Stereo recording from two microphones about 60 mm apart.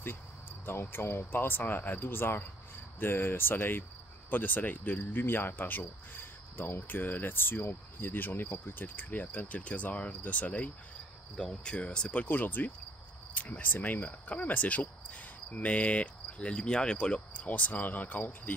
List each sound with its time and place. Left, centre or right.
0.7 s speech: left
11.3 s cricket: centre; by 12.7 s left
13.3 s speech: left
13.8 s cricket: left